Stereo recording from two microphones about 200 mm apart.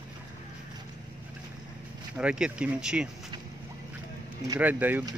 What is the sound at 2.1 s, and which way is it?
Speech, 5° right (ahead or behind).